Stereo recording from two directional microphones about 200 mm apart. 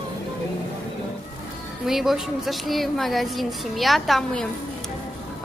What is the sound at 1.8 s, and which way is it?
Speech, centre (ahead or behind).